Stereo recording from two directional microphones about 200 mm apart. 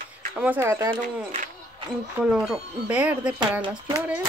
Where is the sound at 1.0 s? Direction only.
40° right (ahead or behind).